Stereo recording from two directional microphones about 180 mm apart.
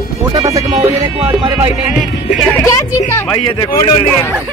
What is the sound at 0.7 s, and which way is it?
Music, 35° right (ahead or behind).